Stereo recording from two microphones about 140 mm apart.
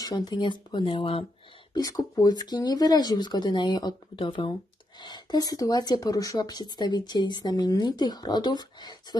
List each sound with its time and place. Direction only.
0.0 s speech: 30° left (ahead or behind)
1.7 s speech: 30° left (ahead or behind)